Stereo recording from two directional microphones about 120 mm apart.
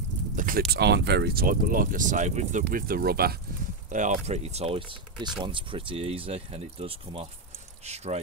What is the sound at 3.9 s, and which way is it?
Speech, 80° right.